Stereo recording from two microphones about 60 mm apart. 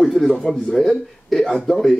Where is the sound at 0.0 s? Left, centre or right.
Centre.